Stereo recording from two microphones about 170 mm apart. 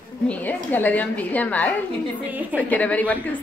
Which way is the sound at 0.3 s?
10° left (ahead or behind).